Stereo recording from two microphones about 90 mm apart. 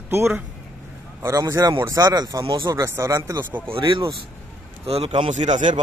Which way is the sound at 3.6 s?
70° right (ahead or behind).